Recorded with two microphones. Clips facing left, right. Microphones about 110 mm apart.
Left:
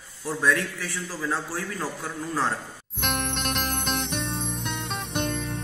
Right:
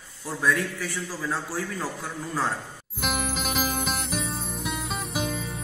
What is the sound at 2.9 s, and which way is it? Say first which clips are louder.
Music: even; 5° right (ahead or behind).